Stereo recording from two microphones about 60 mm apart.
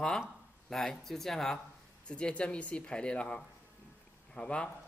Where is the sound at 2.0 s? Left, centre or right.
Centre.